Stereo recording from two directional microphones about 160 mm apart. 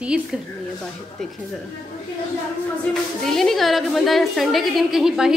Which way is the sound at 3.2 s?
5° left (ahead or behind).